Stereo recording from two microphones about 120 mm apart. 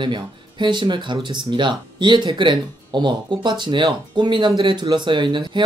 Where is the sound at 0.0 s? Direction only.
40° right (ahead or behind).